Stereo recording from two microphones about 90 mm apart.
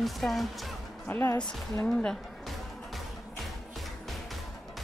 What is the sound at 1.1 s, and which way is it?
Speech, 25° left (ahead or behind).